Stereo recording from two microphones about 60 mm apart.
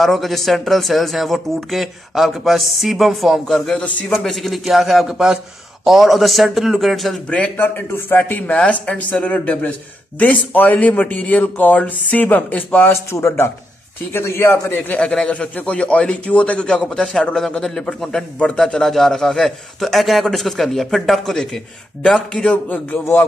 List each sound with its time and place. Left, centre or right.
0.0 s speech: centre
7.2 s a man's voice: left
7.5 s a man's voice: left
13.1 s a man's voice: left
14.7 s a man's voice: left
15.0 s a man's voice: centre
16.8 s a man's voice: centre
22.7 s a man's voice: left